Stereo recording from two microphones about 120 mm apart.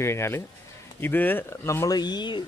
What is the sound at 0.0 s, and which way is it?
Speech, 20° left (ahead or behind).